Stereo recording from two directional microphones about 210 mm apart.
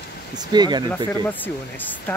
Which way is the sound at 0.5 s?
20° right (ahead or behind).